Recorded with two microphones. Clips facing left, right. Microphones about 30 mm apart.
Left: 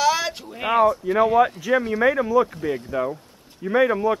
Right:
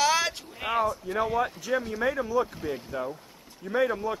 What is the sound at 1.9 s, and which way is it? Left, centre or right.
Speech, left.